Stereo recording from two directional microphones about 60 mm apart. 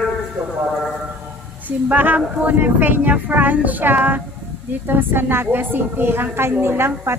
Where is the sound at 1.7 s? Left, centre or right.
Right.